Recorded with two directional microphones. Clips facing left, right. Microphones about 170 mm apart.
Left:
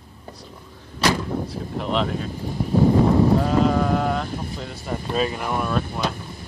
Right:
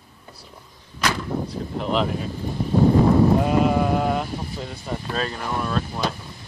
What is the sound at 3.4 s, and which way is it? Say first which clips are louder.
Speech: even; 10° right (ahead or behind).